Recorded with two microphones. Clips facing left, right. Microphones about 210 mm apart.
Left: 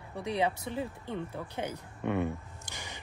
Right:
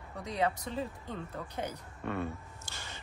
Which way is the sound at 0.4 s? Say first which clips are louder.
Even; 10° left (ahead or behind).